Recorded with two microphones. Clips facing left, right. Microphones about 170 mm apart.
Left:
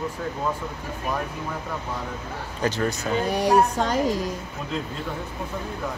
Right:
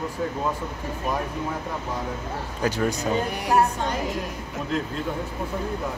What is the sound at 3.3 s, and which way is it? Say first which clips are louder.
Music: left 6 dB; 90° left.